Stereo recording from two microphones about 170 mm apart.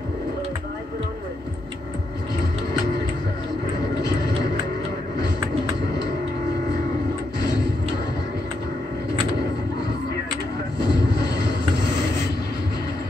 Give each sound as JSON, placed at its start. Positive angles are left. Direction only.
{"t": 7.3, "sound": "music", "side_deg": 25}
{"t": 10.8, "sound": "vehicle", "side_deg": 25}